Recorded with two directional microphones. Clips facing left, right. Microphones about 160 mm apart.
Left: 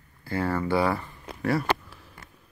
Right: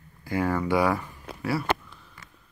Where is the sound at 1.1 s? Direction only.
Centre (ahead or behind).